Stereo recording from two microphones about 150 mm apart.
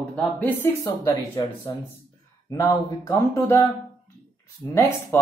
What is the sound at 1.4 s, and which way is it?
Speech, 30° left (ahead or behind).